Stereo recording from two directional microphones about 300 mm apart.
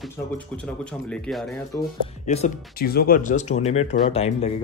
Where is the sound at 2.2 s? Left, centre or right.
Left.